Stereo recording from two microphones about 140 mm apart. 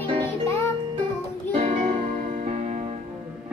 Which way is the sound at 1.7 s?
70° right (ahead or behind).